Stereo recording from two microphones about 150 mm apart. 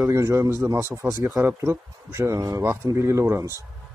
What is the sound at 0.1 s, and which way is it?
Speech, 20° right (ahead or behind).